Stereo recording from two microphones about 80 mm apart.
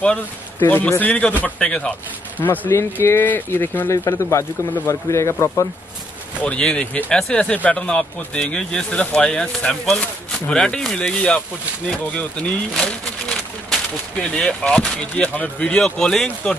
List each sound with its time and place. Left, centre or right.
0.6 s speech: left
2.7 s speech: left
3.9 s speech: left
6.4 s speech: centre